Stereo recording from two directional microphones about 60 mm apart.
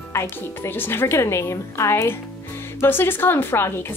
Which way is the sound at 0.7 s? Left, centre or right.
Left.